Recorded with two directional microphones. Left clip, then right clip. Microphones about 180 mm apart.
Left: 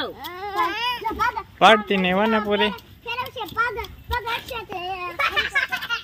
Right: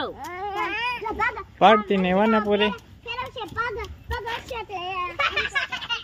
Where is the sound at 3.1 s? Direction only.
50° left (ahead or behind).